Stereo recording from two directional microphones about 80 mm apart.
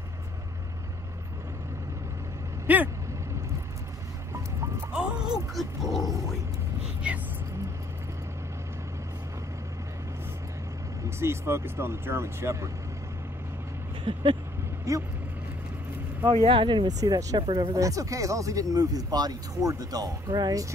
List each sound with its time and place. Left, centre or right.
2.6 s vehicle: right
4.9 s music: centre
5.5 s speech: centre
7.0 s speech: centre
11.1 s speech: right
14.1 s vehicle: right
14.9 s speech: right
16.3 s speech: right
16.8 s speech: right
17.4 s speech: right
17.7 s speech: right